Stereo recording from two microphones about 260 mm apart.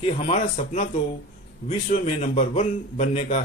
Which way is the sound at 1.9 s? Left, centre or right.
Left.